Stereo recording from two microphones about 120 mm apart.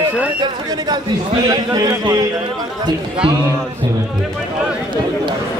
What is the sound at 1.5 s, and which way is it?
Speech, 35° right (ahead or behind).